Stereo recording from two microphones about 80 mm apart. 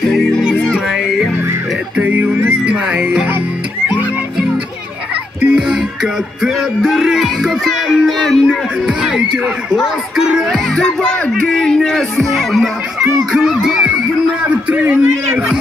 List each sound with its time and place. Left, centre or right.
0.7 s music: centre
2.0 s music: centre
5.4 s music: centre
10.7 s music: centre